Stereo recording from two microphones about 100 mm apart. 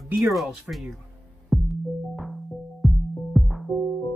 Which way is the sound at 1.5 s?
Centre (ahead or behind).